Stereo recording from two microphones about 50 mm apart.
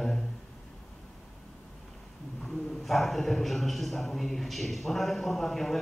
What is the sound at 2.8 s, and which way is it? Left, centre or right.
A man's voice, centre.